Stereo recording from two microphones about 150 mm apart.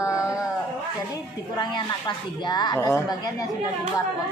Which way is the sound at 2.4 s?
30° left (ahead or behind).